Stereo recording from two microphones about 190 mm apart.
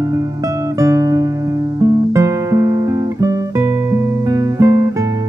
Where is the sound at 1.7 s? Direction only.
15° right (ahead or behind).